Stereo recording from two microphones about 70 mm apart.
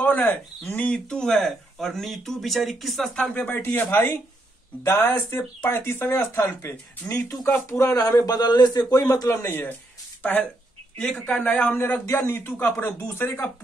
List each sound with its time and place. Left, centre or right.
0.0 s speech: left
0.9 s speech: centre
3.2 s speech: centre; by 6.0 s left
6.0 s speech: left
7.9 s speech: left
8.4 s speech: left
8.9 s speech: left
9.3 s speech: left
11.0 s speech: centre
11.4 s speech: left
11.8 s speech: left